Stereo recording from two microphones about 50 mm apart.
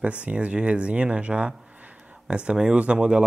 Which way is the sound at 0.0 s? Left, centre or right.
Right.